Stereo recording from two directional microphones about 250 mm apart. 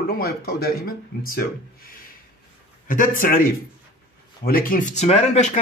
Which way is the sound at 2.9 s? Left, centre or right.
Left.